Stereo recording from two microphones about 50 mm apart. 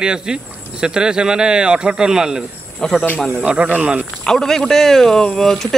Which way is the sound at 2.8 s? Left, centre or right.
Centre.